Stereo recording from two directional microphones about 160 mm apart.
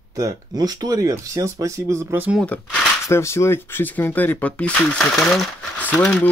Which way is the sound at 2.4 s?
10° left (ahead or behind).